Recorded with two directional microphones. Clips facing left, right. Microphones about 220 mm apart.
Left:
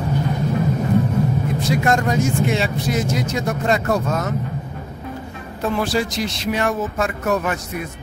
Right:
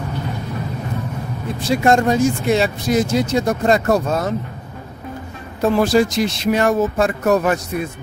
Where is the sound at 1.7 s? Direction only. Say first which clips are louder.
Right 5 dB; 30° right (ahead or behind).